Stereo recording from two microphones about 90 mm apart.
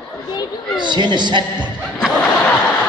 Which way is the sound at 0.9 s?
55° right (ahead or behind).